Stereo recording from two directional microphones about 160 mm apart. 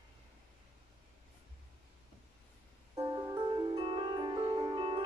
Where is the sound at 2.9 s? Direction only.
20° right (ahead or behind).